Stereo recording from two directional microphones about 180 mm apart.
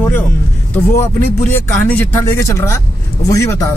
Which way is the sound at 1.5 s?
15° left (ahead or behind).